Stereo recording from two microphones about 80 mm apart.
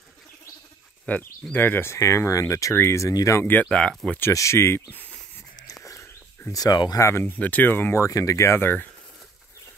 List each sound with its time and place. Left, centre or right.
1.0 s speech: centre; by 2.7 s left
2.7 s speech: left
3.0 s speech: left
3.6 s speech: centre
4.3 s speech: left
5.9 s a sound: left
7.0 s speech: left
7.3 s speech: centre
8.1 s speech: left